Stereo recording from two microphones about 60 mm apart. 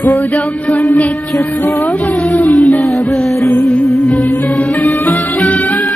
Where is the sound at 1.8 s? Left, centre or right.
Centre.